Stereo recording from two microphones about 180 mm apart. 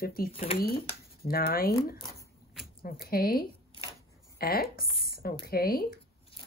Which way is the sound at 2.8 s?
55° left (ahead or behind).